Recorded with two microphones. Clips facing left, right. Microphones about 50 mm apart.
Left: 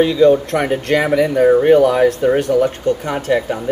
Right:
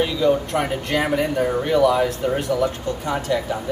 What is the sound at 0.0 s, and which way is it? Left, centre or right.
Speech, left.